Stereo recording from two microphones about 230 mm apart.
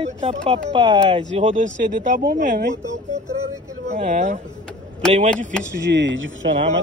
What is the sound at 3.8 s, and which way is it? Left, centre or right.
Speech, right.